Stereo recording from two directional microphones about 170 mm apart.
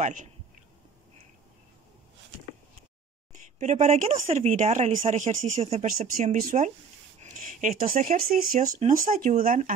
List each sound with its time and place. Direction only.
0.0 s speech: 45° right (ahead or behind)
3.5 s speech: 40° right (ahead or behind)
7.2 s a sound: 50° right (ahead or behind)
8.5 s speech: 45° right (ahead or behind)